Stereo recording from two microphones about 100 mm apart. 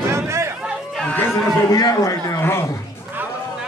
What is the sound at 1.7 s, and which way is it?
Speech, 35° left (ahead or behind).